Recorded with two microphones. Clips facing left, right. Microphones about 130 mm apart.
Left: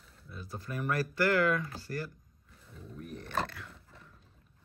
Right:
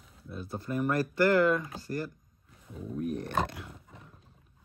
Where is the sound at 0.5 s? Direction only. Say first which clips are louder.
Right 4 dB; 25° right (ahead or behind).